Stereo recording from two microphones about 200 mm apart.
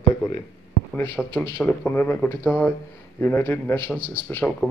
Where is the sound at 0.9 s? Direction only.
10° left (ahead or behind).